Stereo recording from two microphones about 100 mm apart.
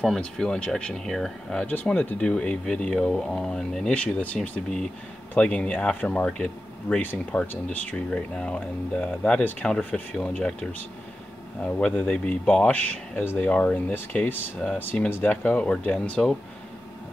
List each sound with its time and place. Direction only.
0.0 s speech: 5° left (ahead or behind)